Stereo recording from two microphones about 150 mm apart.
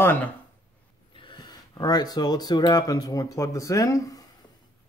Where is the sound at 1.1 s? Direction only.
35° left (ahead or behind).